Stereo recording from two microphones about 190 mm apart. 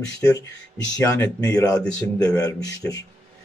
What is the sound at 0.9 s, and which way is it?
A man's voice, 15° left (ahead or behind).